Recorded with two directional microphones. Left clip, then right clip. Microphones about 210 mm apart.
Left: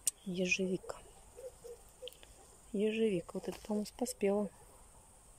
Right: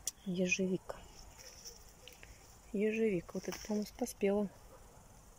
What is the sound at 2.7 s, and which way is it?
Speech, 10° left (ahead or behind).